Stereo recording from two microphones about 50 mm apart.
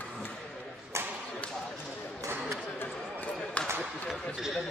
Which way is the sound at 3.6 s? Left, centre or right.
Left.